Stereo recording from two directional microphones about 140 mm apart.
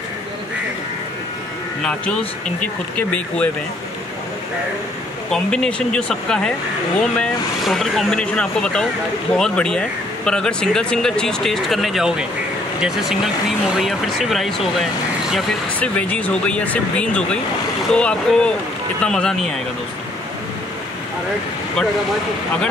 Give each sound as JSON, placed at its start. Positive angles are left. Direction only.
{"t": 1.8, "sound": "speech", "side_deg": 10}
{"t": 5.3, "sound": "speech", "side_deg": 5}
{"t": 15.8, "sound": "speech", "side_deg": 10}